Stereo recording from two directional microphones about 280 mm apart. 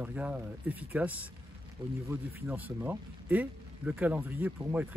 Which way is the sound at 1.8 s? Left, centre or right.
Centre.